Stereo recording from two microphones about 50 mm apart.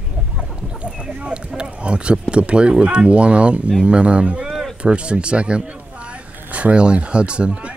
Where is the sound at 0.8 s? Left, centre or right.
Right.